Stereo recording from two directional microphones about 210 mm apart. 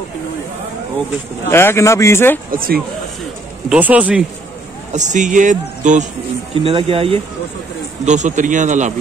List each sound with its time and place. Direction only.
1.5 s speech: 10° left (ahead or behind)
2.5 s speech: 45° right (ahead or behind)
3.6 s speech: 5° right (ahead or behind)
4.9 s speech: 35° right (ahead or behind)
6.5 s speech: 25° right (ahead or behind)